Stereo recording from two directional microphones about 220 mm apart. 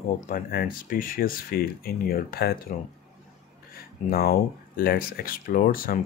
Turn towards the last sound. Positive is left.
turn(degrees=40)  # may be behind; listen again after turning